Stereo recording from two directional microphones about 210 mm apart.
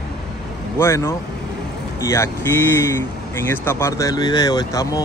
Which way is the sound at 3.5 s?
10° left (ahead or behind).